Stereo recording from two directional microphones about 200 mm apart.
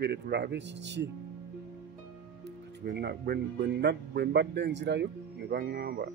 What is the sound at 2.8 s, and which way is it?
Speech, 55° right (ahead or behind).